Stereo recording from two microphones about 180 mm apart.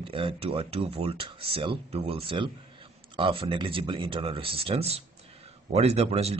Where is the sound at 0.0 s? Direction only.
30° right (ahead or behind).